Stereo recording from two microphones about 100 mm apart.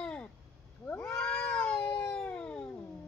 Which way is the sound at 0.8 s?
25° left (ahead or behind).